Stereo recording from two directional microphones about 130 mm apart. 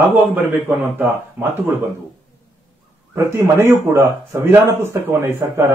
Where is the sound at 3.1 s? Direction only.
20° right (ahead or behind).